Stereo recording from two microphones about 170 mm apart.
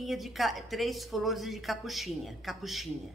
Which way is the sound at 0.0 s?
Centre (ahead or behind).